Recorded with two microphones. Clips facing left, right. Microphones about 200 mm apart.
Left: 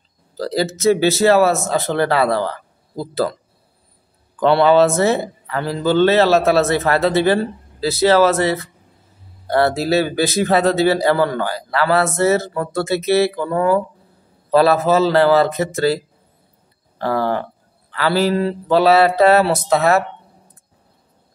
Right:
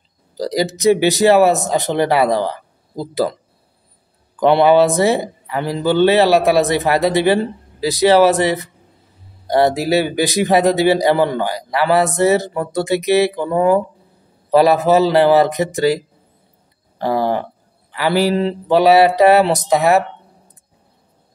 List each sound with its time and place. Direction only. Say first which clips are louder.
0.4 s a man's voice: right 1 dB; 15° right (ahead or behind)
4.4 s a man's voice: right 1 dB; 15° right (ahead or behind)
17.0 s a man's voice: right 2 dB; 15° right (ahead or behind)